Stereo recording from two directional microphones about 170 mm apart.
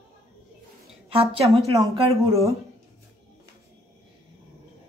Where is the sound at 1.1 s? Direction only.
35° right (ahead or behind).